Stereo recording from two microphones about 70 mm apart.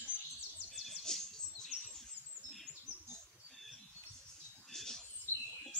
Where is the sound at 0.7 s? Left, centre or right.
Centre.